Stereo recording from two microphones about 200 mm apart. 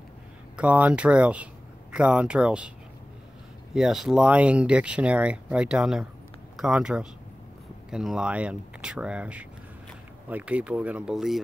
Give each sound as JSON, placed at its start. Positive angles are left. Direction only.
{"t": 0.6, "sound": "speech", "side_deg": -5}
{"t": 3.7, "sound": "speech", "side_deg": 0}